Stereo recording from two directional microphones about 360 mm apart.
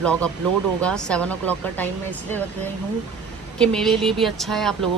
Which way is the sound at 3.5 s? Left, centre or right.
Centre.